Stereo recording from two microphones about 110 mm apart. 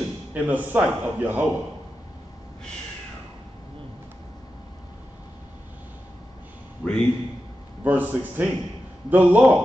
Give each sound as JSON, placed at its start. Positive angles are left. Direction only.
{"t": 0.3, "sound": "a man's voice", "side_deg": -15}
{"t": 6.8, "sound": "a sound", "side_deg": 10}
{"t": 7.8, "sound": "a man's voice", "side_deg": -15}